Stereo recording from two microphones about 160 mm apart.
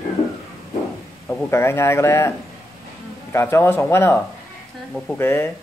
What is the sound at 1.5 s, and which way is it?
Speech, 15° left (ahead or behind).